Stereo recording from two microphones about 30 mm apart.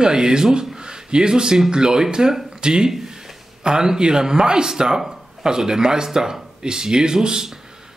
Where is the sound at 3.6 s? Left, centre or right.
Right.